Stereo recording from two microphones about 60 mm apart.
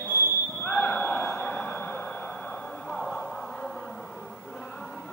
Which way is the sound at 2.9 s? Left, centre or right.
Centre.